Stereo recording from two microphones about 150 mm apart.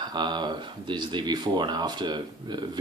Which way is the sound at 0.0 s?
30° right (ahead or behind).